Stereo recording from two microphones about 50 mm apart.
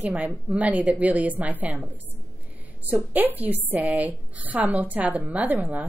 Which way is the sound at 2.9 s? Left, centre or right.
Right.